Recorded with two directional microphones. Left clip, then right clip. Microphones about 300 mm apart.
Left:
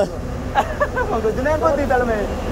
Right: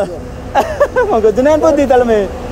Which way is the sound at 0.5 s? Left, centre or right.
Centre.